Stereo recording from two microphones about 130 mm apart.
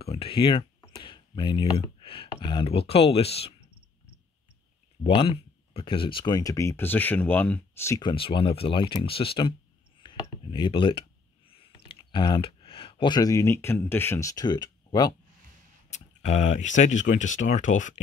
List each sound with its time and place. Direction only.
0.0 s speech: 45° left (ahead or behind)
0.9 s a sound: 40° left (ahead or behind)
2.4 s speech: 45° left (ahead or behind)
5.0 s speech: 45° left (ahead or behind); by 8.0 s 20° left (ahead or behind)
8.0 s speech: 40° left (ahead or behind)
10.0 s a sound: 40° left (ahead or behind); by 14.3 s 15° left (ahead or behind)
14.3 s speech: 35° left (ahead or behind)
15.9 s speech: 60° left (ahead or behind)